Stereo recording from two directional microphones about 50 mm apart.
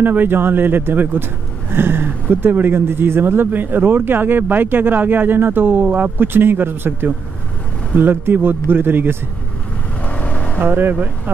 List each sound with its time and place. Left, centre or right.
0.0 s speech: right
10.0 s vehicle: left
10.6 s speech: right